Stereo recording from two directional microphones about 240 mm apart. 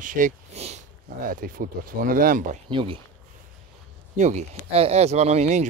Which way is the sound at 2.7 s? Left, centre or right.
Right.